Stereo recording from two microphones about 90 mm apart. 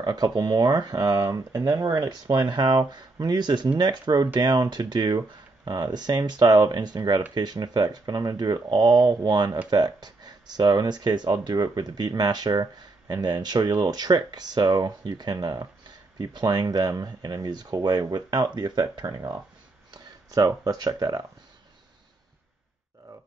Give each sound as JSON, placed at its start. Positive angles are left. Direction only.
{"t": 0.0, "sound": "speech", "side_deg": -50}
{"t": 19.9, "sound": "speech", "side_deg": -40}